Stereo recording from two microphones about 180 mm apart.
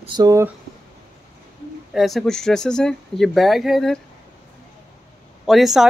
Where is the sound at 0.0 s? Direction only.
25° right (ahead or behind).